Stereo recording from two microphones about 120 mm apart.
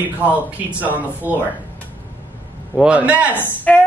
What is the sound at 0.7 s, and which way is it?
Speech, 15° right (ahead or behind).